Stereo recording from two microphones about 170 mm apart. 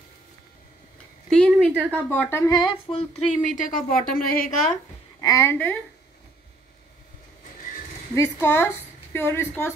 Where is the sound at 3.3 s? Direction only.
55° left (ahead or behind).